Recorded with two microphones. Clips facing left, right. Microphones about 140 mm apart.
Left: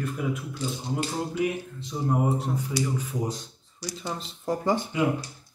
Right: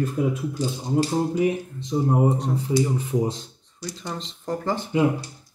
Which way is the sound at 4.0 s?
5° left (ahead or behind).